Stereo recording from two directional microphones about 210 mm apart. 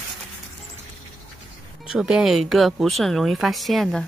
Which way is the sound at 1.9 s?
5° right (ahead or behind).